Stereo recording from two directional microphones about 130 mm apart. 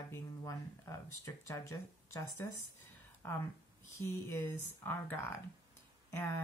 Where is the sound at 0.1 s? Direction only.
25° left (ahead or behind).